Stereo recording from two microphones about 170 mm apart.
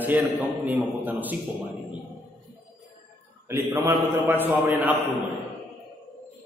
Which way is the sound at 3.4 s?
15° right (ahead or behind).